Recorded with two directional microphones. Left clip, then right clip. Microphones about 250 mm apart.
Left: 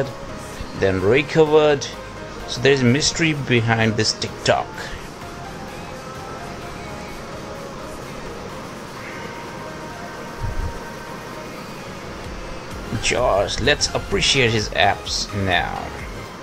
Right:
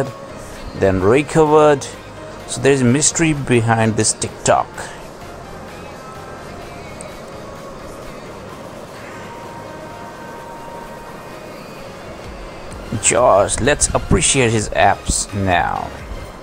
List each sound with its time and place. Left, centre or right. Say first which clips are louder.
0.7 s speech: right 3 dB; centre
13.1 s speech: right 6 dB; centre